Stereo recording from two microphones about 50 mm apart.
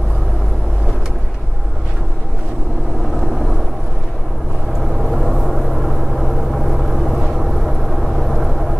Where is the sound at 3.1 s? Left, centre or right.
Centre.